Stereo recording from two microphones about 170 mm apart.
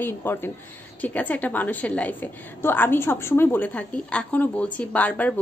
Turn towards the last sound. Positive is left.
turn(degrees=10)  # may be behind; listen again after turning